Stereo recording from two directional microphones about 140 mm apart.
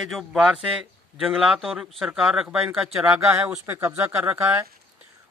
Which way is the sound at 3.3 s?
15° right (ahead or behind).